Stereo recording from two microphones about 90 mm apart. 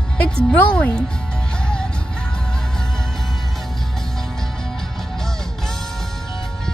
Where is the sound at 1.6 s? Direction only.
10° left (ahead or behind).